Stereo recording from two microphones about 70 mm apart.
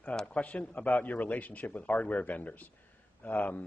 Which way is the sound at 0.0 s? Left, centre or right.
Centre.